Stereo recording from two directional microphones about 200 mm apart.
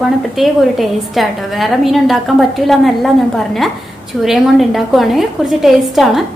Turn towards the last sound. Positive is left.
turn(degrees=0)  # may be behind; listen again after turning